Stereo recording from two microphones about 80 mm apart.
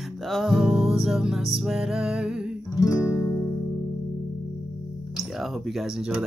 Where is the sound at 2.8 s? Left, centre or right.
Left.